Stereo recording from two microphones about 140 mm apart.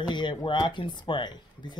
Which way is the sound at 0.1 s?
35° left (ahead or behind).